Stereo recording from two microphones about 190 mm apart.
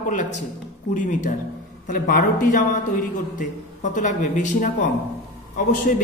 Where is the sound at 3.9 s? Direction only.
40° left (ahead or behind).